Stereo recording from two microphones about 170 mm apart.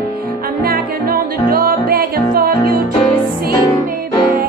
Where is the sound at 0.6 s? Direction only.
60° right (ahead or behind).